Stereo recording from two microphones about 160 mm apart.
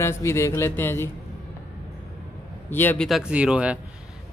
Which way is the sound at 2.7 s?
10° left (ahead or behind).